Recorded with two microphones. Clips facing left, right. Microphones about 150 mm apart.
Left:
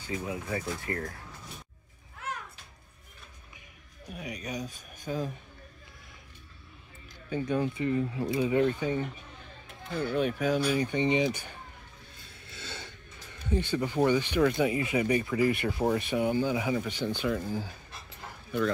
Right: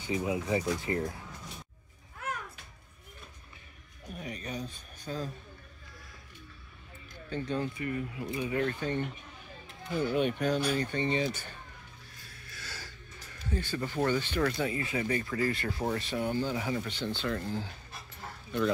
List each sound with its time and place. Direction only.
0.0 s speech: 20° right (ahead or behind)
4.1 s speech: 10° left (ahead or behind)
7.2 s speech: 15° left (ahead or behind)
10.1 s speech: centre (ahead or behind)
12.3 s a sound: 25° left (ahead or behind)
14.6 s speech: 15° left (ahead or behind)